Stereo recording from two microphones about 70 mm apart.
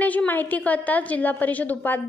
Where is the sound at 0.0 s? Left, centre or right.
Left.